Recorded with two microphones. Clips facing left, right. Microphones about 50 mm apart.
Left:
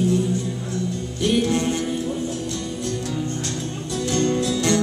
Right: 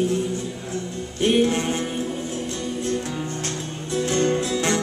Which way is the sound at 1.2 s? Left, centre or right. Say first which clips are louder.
Right 1 dB; right.